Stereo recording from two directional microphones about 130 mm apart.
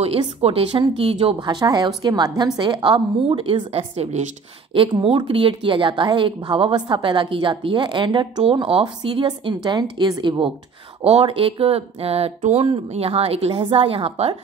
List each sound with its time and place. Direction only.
0.4 s a woman's voice: 45° right (ahead or behind)
5.0 s a woman's voice: 40° right (ahead or behind)
11.1 s speech: 45° right (ahead or behind)